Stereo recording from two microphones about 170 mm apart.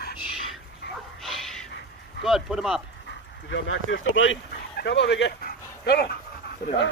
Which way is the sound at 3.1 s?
90° left.